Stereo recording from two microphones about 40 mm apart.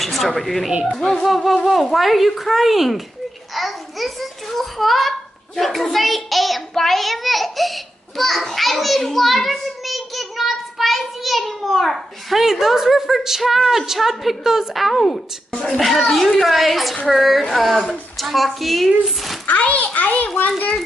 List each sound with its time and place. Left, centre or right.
0.0 s a woman's voice: centre
15.0 s speech: left
15.8 s a child's voice: centre
19.6 s a child's voice: left